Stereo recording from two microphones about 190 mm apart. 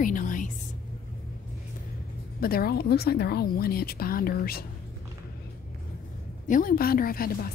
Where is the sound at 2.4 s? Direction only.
55° left (ahead or behind).